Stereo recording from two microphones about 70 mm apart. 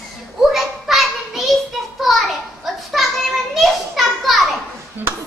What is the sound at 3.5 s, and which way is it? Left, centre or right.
Children playing, centre.